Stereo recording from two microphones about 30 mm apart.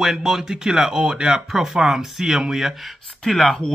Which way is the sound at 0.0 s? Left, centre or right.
Centre.